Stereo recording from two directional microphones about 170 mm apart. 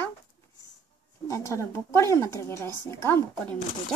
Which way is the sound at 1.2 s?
20° left (ahead or behind).